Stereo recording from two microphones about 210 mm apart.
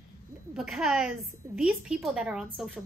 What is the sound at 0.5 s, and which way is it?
A woman's voice, 5° right (ahead or behind).